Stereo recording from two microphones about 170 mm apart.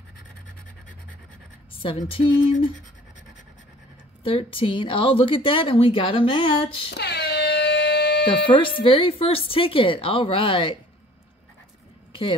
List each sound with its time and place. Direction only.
1.7 s a sound: 30° left (ahead or behind)
2.0 s a woman's voice: 30° left (ahead or behind)
4.2 s a woman's voice: 30° left (ahead or behind)
6.9 s air horn: 75° left (ahead or behind)
8.5 s a woman's voice: 30° left (ahead or behind)
12.1 s a sound: 30° left (ahead or behind)